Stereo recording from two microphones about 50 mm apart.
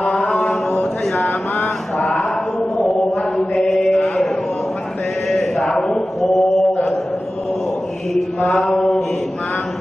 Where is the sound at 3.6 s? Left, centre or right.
Centre.